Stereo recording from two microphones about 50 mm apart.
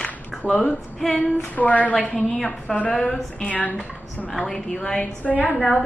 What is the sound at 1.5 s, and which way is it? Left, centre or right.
A woman's voice, left.